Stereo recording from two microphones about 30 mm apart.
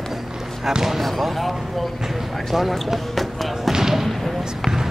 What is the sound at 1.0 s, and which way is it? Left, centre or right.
Speech, centre.